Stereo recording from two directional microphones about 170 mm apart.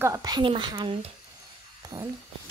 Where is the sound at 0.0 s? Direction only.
20° right (ahead or behind).